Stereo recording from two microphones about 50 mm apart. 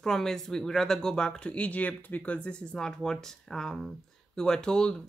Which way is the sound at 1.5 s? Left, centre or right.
Left.